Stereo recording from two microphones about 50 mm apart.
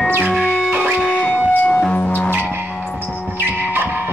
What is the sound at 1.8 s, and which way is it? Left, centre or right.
Music, left.